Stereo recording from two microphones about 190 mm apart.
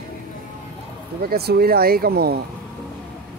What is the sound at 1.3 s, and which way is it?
Speech, 55° right (ahead or behind).